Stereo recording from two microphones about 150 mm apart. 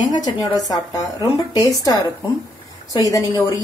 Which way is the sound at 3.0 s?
25° left (ahead or behind).